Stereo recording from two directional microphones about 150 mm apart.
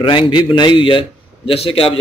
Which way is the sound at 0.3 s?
35° left (ahead or behind).